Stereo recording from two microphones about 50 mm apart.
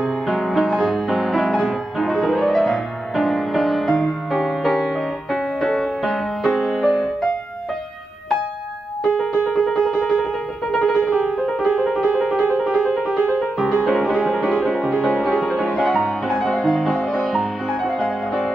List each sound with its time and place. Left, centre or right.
0.0 s music: centre
9.0 s music: centre
11.1 s music: centre
12.6 s music: centre
15.2 s music: centre
16.5 s music: centre